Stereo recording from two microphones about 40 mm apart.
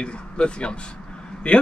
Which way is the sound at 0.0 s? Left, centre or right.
Left.